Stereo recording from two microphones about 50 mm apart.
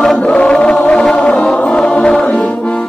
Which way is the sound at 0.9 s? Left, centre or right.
Centre.